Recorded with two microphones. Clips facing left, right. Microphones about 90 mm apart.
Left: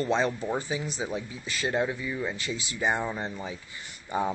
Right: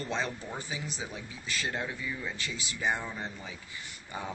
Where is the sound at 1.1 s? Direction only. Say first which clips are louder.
Left 4 dB; 25° left (ahead or behind).